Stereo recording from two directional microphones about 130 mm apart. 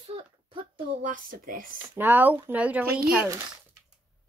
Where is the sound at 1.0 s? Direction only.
85° right.